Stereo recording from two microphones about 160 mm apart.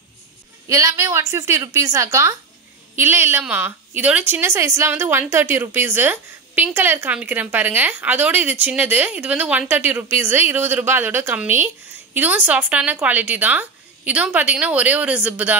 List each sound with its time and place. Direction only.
0.7 s a woman's voice: 20° right (ahead or behind)